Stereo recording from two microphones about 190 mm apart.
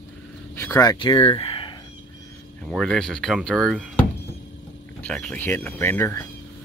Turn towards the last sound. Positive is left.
turn(degrees=10)  # may be behind; listen again after turning